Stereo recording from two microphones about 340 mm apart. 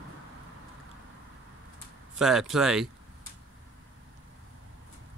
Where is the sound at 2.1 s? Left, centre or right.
Centre.